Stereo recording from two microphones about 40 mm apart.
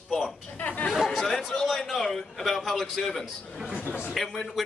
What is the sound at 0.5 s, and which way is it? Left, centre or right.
Speech, left.